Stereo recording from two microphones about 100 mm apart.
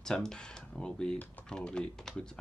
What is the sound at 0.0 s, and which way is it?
Speech, 5° left (ahead or behind).